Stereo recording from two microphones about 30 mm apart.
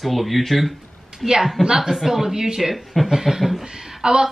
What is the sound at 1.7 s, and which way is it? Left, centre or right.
Speech, centre.